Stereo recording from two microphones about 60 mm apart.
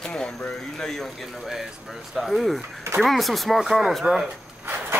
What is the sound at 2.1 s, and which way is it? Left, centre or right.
Speech, centre.